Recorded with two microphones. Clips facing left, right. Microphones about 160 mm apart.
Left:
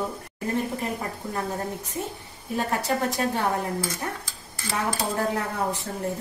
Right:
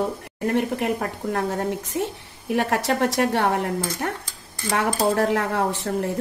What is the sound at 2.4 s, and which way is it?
A woman's voice, 75° right (ahead or behind).